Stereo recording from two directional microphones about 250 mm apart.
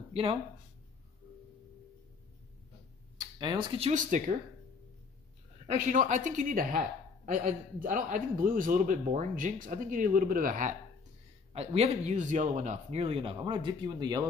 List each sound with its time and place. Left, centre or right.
0.1 s speech: right
3.2 s speech: centre
5.7 s a man's voice: right